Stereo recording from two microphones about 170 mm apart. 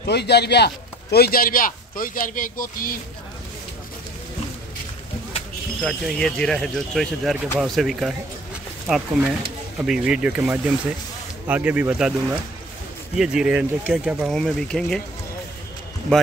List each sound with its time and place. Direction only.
0.0 s speech: 75° left (ahead or behind); by 2.9 s 50° left (ahead or behind)
5.8 s speech: centre (ahead or behind)